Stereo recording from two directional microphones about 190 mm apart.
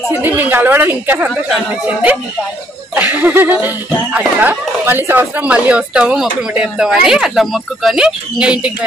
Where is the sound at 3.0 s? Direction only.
10° right (ahead or behind).